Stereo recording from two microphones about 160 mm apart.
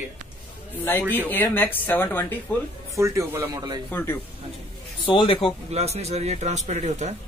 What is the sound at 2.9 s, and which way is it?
Speech, 20° right (ahead or behind).